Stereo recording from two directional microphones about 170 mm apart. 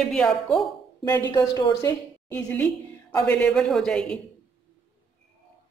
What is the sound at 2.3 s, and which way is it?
A woman's voice, 10° left (ahead or behind).